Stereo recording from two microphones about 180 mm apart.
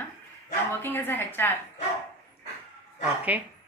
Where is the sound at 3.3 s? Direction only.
10° right (ahead or behind).